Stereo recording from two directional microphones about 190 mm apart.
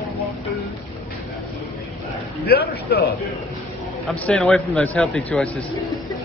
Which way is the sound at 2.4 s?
55° left (ahead or behind).